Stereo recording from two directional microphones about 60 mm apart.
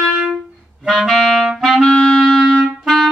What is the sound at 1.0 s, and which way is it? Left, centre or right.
Clarinet, centre.